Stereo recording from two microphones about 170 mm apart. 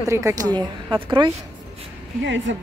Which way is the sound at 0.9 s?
30° right (ahead or behind).